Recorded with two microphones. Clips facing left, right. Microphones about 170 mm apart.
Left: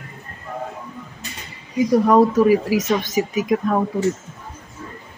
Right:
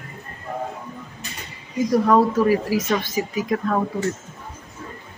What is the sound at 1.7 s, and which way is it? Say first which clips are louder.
Speech: left 3 dB; 15° left (ahead or behind).